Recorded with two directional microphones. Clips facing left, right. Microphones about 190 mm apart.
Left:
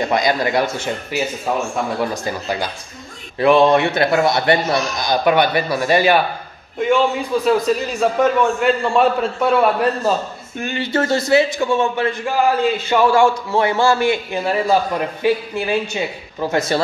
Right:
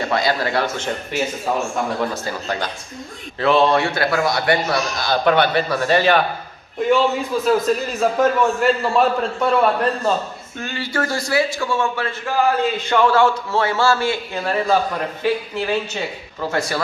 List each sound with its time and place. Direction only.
0.1 s a man's voice: 15° left (ahead or behind)
6.8 s a man's voice: centre (ahead or behind)
10.6 s a man's voice: 20° left (ahead or behind)